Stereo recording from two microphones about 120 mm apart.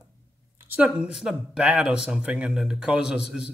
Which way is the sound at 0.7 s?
10° right (ahead or behind).